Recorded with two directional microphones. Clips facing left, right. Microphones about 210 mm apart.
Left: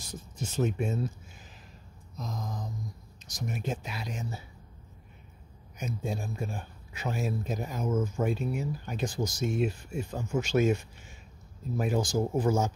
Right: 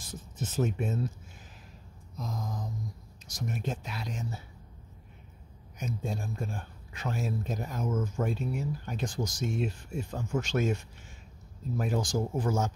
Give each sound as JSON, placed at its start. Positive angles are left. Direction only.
{"t": 0.0, "sound": "speech", "side_deg": -5}
{"t": 2.1, "sound": "a sound", "side_deg": -10}
{"t": 3.3, "sound": "speech", "side_deg": 0}
{"t": 5.8, "sound": "speech", "side_deg": 0}